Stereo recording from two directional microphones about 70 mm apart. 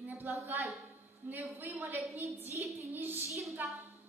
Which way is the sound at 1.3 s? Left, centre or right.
Right.